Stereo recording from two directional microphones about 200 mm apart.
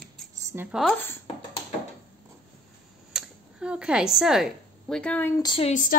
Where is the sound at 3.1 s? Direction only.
5° right (ahead or behind); by 5.7 s 25° left (ahead or behind).